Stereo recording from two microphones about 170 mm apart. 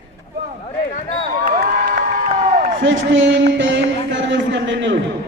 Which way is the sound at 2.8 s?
90° right.